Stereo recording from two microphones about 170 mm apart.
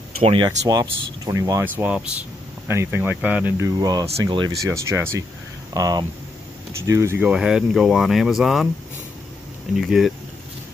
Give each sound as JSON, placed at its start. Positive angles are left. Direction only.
{"t": 0.2, "sound": "speech", "side_deg": -35}
{"t": 3.6, "sound": "speech", "side_deg": -20}
{"t": 9.8, "sound": "speech", "side_deg": 0}